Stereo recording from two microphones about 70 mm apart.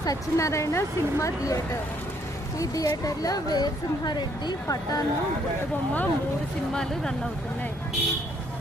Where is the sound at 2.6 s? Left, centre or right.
Left.